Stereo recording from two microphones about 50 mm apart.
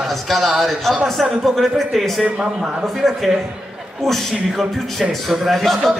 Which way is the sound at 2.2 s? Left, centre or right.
Right.